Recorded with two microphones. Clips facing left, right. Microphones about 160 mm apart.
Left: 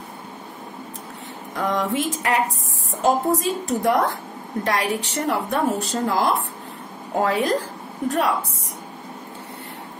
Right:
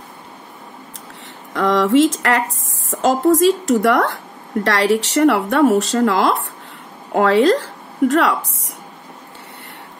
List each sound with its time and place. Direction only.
1.5 s speech: 85° right